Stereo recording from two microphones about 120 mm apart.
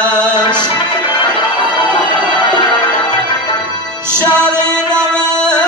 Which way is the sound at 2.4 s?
40° left (ahead or behind).